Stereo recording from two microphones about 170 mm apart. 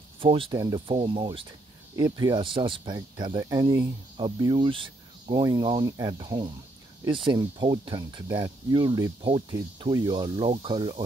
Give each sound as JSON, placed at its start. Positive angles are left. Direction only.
{"t": 0.2, "sound": "speech", "side_deg": -30}